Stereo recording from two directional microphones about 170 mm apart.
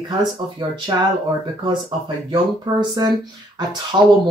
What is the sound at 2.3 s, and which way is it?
Speech, 25° right (ahead or behind).